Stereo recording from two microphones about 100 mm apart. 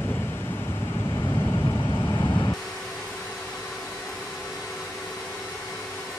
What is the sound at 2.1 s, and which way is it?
Vehicle, 30° left (ahead or behind).